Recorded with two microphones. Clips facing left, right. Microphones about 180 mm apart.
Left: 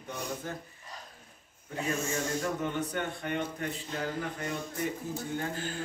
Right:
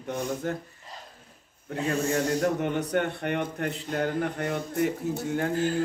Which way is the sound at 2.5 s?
70° right (ahead or behind).